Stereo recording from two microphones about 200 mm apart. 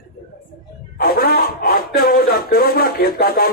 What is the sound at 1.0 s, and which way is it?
Speech, 50° left (ahead or behind).